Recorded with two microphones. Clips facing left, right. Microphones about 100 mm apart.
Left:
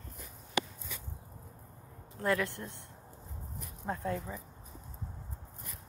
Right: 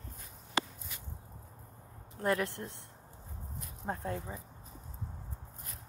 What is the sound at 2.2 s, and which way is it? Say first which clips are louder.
Speech: even; 25° right (ahead or behind).